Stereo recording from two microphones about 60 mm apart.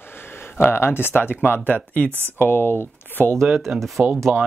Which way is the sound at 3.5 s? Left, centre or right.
Centre.